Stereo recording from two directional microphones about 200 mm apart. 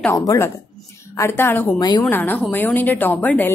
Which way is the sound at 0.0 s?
15° left (ahead or behind).